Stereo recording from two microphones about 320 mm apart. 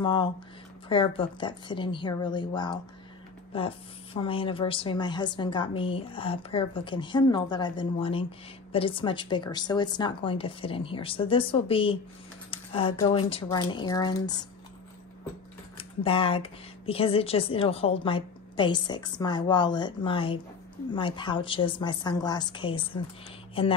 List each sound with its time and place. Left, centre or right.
0.0 s a woman's voice: centre
15.8 s a woman's voice: centre